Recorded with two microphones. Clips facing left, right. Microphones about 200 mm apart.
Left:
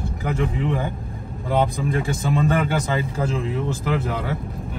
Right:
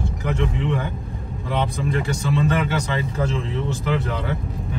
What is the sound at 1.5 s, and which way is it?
Speech, 50° left (ahead or behind).